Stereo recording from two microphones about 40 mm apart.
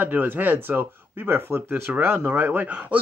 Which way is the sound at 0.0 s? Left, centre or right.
Right.